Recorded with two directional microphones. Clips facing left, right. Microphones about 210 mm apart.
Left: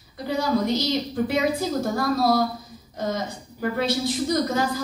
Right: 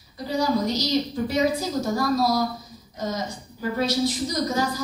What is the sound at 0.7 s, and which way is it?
A woman's voice, 55° left (ahead or behind).